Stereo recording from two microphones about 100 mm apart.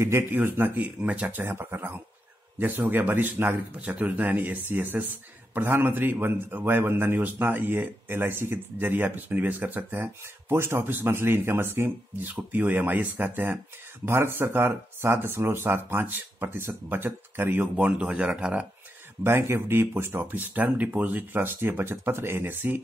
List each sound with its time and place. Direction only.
0.0 s speech: 25° right (ahead or behind)
19.2 s speech: 25° right (ahead or behind)